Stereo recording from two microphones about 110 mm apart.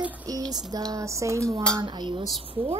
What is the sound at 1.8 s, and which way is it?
Speech, 45° right (ahead or behind).